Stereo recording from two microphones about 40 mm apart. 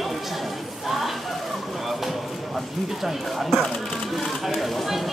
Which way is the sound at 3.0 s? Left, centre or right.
Centre.